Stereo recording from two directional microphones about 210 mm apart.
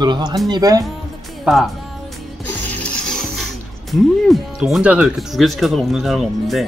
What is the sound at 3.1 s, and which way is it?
Music, centre (ahead or behind).